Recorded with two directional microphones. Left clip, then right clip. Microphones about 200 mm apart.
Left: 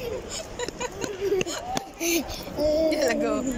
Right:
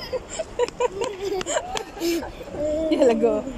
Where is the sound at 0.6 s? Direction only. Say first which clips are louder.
Right 9 dB; 45° right (ahead or behind).